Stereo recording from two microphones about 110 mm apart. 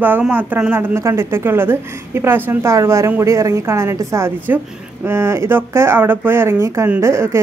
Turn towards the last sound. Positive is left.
turn(degrees=-25)  # may be behind; listen again after turning